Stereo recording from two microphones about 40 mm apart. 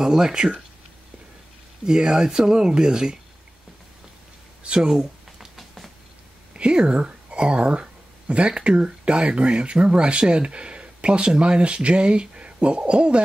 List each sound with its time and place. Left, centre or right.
0.0 s speech: centre
1.9 s speech: centre
4.7 s a sound: centre
6.5 s speech: right